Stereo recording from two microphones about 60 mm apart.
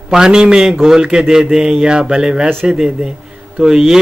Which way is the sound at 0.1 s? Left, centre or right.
Centre.